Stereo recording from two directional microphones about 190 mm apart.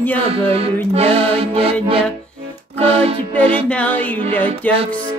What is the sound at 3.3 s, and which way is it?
Speech, 5° left (ahead or behind).